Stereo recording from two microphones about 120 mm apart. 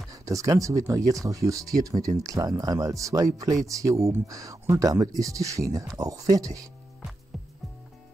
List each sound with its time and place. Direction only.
0.1 s speech: 25° right (ahead or behind)
7.3 s music: centre (ahead or behind)